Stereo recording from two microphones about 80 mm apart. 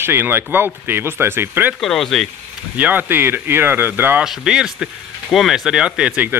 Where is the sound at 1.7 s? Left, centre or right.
Centre.